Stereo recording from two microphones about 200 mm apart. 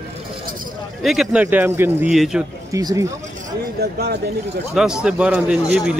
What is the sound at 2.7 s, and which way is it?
Speech, 15° right (ahead or behind).